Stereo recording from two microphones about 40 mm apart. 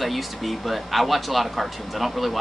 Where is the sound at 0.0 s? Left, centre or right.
Centre.